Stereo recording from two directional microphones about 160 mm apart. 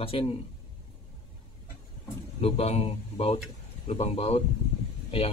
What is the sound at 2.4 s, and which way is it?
Speech, 40° left (ahead or behind).